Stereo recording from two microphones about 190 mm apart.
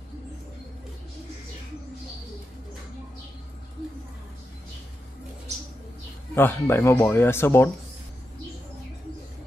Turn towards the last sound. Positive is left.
turn(degrees=10)  # may be behind; listen again after turning